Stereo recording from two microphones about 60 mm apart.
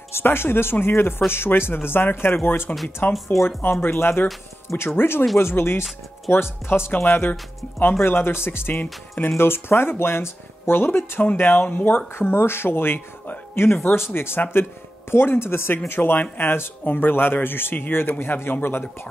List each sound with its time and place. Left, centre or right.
0.1 s speech: left
3.0 s speech: left
3.8 s speech: left